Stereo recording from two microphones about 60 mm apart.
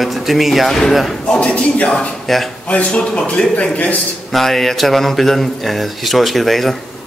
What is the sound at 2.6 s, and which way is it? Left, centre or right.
A man's voice, left.